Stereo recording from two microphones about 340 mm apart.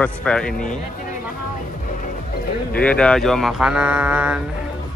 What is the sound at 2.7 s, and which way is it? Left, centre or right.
Speech, centre.